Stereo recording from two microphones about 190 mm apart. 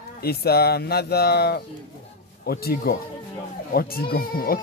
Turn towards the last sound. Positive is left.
turn(degrees=50)  # may be behind; listen again after turning